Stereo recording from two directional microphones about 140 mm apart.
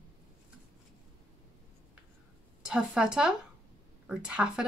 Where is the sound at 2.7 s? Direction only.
5° right (ahead or behind).